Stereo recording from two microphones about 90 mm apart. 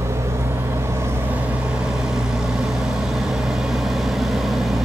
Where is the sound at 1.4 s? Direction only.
15° right (ahead or behind).